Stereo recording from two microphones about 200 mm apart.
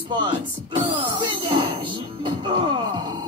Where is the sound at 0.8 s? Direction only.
25° right (ahead or behind).